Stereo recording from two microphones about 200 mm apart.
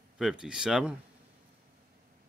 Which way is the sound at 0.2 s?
5° right (ahead or behind).